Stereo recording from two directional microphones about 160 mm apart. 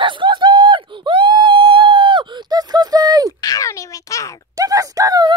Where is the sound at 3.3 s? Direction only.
25° left (ahead or behind).